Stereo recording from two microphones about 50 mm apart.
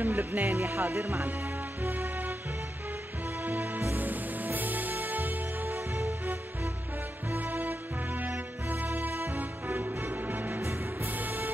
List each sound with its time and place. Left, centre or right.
0.0 s speech: right
0.5 s music: right
3.4 s music: right
5.7 s music: right
7.3 s music: right